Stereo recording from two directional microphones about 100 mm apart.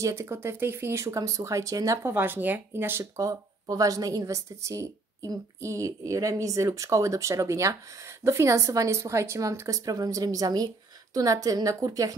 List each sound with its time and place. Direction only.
0.0 s speech: 30° right (ahead or behind)
2.1 s speech: 20° right (ahead or behind)
3.2 s a woman's voice: 35° right (ahead or behind)